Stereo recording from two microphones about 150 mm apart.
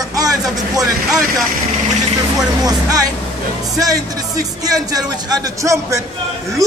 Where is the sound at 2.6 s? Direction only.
25° right (ahead or behind).